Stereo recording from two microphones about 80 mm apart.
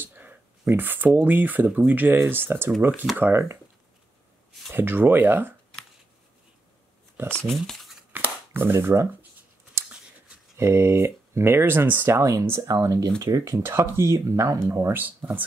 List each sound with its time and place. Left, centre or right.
0.0 s a sound: right
1.8 s speech: right
4.7 s speech: right
7.4 s speech: centre
8.1 s shuffling cards: right
10.6 s speech: right
12.2 s speech: right
13.6 s speech: right
14.9 s speech: right